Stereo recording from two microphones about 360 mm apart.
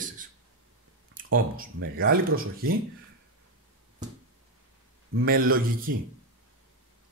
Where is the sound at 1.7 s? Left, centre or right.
Right.